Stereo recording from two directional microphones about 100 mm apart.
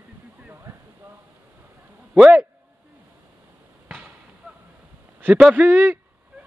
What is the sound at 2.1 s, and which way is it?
Speech, 10° right (ahead or behind).